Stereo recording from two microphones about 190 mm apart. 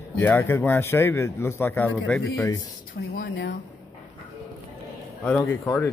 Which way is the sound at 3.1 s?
90° left.